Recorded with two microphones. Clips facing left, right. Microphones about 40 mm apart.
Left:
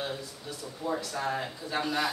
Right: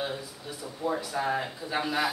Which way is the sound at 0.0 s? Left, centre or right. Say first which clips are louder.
Right 2 dB; centre.